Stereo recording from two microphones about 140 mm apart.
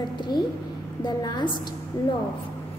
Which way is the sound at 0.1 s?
35° left (ahead or behind).